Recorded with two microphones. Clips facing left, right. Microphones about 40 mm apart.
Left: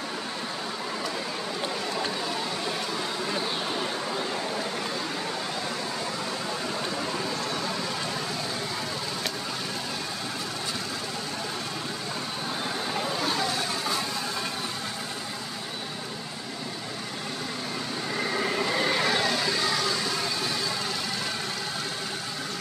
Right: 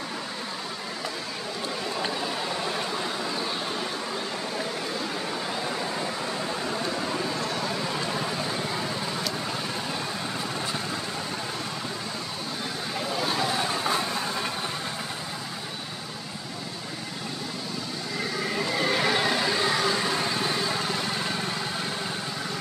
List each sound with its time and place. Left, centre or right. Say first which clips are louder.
6.6 s a sound: right 1 dB; centre
7.5 s vehicle: right 1 dB; centre
12.9 s vehicle: right 2 dB; centre
13.5 s vehicle: right 3 dB; centre
18.3 s vehicle: left 1 dB; centre
19.0 s vehicle: right 1 dB; centre